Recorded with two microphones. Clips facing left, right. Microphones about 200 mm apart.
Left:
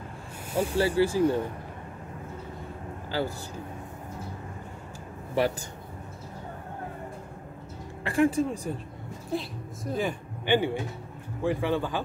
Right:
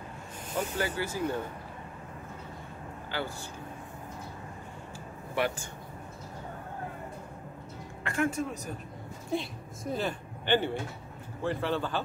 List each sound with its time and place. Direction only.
0.5 s speech: 10° left (ahead or behind)
0.7 s speech: 30° left (ahead or behind)
3.1 s a man's voice: 35° left (ahead or behind)
5.3 s speech: 40° left (ahead or behind)
8.0 s speech: 30° left (ahead or behind)
9.3 s a woman's voice: centre (ahead or behind)
9.9 s a man's voice: 15° left (ahead or behind)